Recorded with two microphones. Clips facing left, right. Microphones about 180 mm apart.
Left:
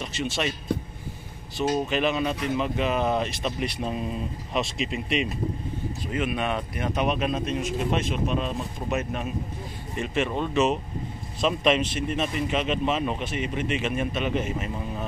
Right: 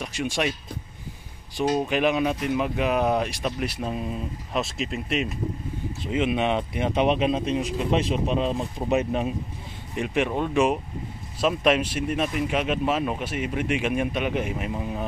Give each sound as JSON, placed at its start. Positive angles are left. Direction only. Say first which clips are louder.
{"t": 0.0, "sound": "speech", "louder": "right 2 dB", "side_deg": -10}
{"t": 1.6, "sound": "speech", "louder": "right 2 dB", "side_deg": -15}
{"t": 6.1, "sound": "speech", "louder": "right 4 dB", "side_deg": -25}
{"t": 9.9, "sound": "speech", "louder": "right 2 dB", "side_deg": -15}